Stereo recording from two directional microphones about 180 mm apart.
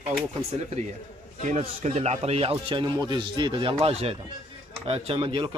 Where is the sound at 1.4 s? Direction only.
40° right (ahead or behind).